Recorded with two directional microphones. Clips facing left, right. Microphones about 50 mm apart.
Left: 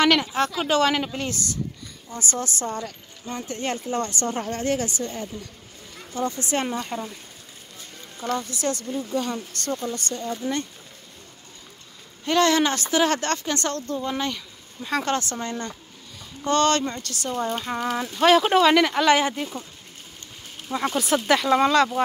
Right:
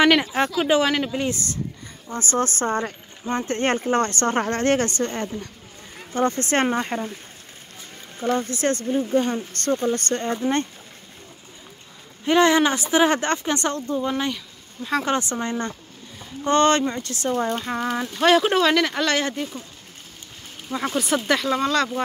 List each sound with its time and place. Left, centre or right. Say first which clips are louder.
0.0 s speech: right 2 dB; centre
0.8 s speech: even; centre
1.3 s speech: right 1 dB; right
8.4 s speech: right 4 dB; right
12.3 s speech: right 3 dB; centre
15.0 s speech: right 2 dB; centre
17.6 s speech: right 1 dB; centre
20.7 s speech: even; centre